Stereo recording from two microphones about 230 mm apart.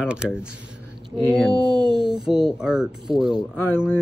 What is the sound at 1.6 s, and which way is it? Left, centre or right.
Speech, centre.